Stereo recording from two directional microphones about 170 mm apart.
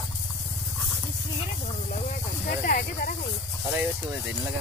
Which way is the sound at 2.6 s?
55° left (ahead or behind).